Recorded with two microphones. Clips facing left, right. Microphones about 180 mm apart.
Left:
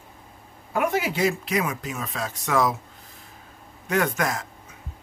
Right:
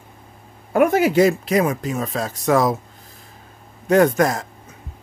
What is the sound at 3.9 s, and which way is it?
Speech, 35° right (ahead or behind).